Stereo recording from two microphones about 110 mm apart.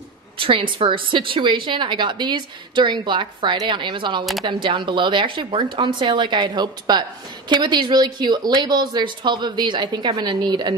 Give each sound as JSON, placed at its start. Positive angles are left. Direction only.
{"t": 0.4, "sound": "a woman's voice", "side_deg": -55}